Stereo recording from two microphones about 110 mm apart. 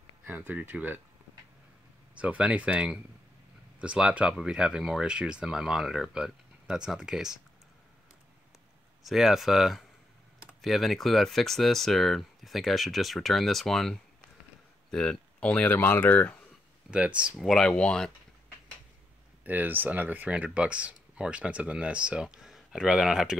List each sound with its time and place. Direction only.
0.2 s speech: 15° right (ahead or behind)
2.1 s speech: 10° right (ahead or behind)
9.0 s speech: 5° right (ahead or behind); by 16.3 s 15° left (ahead or behind)
16.9 s speech: 10° right (ahead or behind)
17.4 s speech: 5° left (ahead or behind)
19.4 s speech: 15° right (ahead or behind)